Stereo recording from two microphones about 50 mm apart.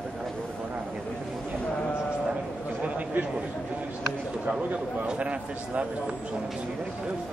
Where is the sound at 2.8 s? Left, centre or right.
Right.